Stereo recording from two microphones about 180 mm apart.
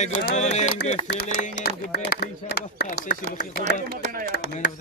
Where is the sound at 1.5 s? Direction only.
70° left (ahead or behind).